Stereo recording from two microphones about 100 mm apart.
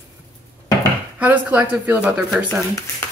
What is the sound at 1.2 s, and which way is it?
Speech, 15° right (ahead or behind).